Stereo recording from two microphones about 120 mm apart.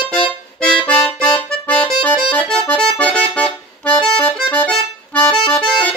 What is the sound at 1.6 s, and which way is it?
Accordion, 15° left (ahead or behind).